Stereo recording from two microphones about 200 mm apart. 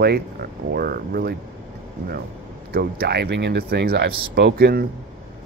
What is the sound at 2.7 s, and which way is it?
Speech, 50° right (ahead or behind).